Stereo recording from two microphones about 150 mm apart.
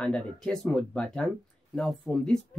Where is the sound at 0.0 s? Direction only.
5° left (ahead or behind).